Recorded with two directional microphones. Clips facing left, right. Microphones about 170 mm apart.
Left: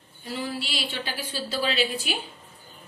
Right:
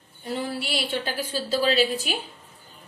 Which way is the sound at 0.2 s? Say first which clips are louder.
Right 2 dB; 55° right (ahead or behind).